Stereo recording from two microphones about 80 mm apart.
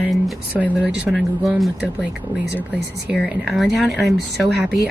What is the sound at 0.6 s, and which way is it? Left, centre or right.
Speech, centre.